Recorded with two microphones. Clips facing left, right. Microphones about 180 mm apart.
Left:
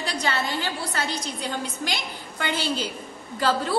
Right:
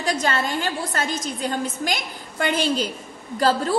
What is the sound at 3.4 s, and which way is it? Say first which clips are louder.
Speech: right 4 dB; 40° right (ahead or behind).